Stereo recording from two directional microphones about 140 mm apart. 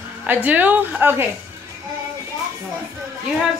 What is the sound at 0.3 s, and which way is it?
Speech, 10° right (ahead or behind).